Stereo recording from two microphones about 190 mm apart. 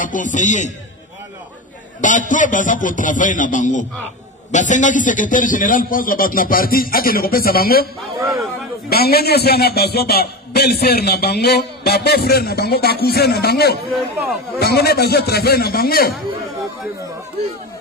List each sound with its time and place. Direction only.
0.0 s a man's voice: 45° left (ahead or behind)
2.0 s a man's voice: 40° left (ahead or behind)